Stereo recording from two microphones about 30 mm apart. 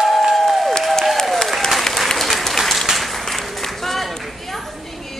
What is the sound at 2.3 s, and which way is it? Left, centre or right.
Applause, centre.